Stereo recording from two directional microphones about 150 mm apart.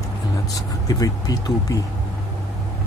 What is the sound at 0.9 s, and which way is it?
Speech, 25° left (ahead or behind).